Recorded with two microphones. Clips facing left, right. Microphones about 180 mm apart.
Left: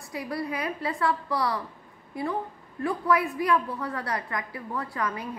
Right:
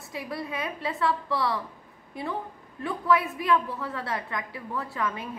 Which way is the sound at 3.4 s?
25° right (ahead or behind).